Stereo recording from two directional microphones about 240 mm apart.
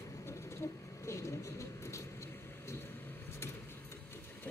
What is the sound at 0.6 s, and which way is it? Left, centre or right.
Speech, centre.